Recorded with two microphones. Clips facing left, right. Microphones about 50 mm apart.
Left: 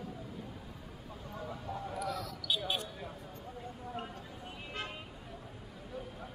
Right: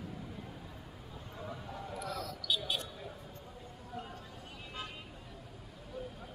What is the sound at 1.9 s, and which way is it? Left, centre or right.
Basketball bounce, centre.